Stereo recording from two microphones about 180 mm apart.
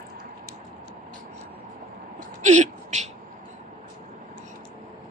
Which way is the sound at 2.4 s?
40° right (ahead or behind).